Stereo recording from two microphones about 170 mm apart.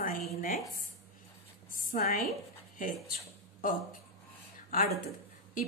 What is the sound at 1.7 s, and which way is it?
Speech, 55° left (ahead or behind).